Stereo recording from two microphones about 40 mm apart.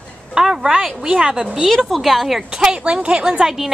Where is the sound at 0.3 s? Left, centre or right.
Centre.